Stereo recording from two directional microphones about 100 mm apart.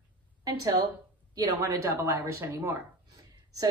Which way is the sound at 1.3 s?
35° right (ahead or behind).